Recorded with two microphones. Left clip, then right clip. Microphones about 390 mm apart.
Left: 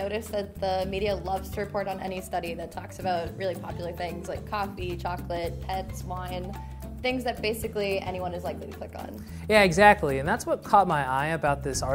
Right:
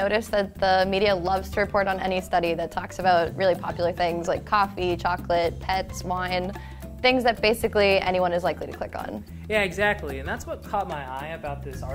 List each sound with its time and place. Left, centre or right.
0.0 s a woman's voice: right
9.5 s speech: left